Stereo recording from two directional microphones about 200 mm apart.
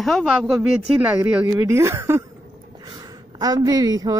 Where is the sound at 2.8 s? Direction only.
20° right (ahead or behind).